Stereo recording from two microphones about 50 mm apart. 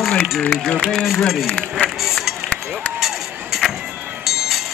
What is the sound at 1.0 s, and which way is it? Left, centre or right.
Speech, centre.